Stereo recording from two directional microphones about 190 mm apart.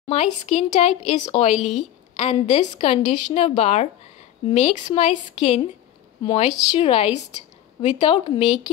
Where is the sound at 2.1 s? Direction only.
30° left (ahead or behind).